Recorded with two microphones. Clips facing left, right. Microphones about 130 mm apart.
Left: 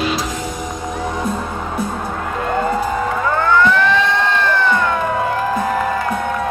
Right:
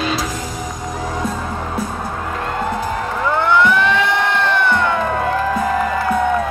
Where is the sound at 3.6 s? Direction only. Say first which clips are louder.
Left 1 dB; 15° right (ahead or behind).